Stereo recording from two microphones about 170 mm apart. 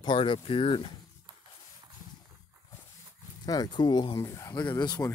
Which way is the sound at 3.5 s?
25° left (ahead or behind).